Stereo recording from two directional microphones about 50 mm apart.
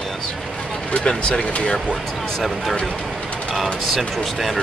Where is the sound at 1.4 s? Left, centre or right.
Left.